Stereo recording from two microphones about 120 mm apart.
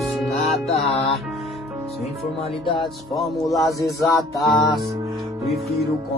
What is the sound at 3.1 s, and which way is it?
Music, centre (ahead or behind).